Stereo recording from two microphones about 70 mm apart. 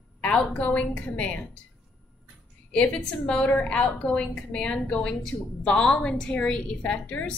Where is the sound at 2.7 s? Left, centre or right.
Centre.